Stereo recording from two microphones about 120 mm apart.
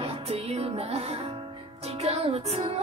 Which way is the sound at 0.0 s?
55° right (ahead or behind).